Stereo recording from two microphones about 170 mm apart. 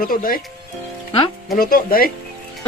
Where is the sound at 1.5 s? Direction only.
60° left (ahead or behind).